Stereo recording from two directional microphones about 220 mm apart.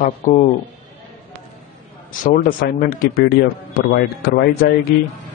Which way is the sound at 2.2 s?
40° left (ahead or behind).